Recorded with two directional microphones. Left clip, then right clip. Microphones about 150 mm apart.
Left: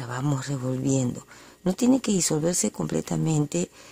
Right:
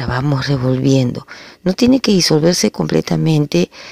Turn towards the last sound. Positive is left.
turn(degrees=-25)  # may be behind; listen again after turning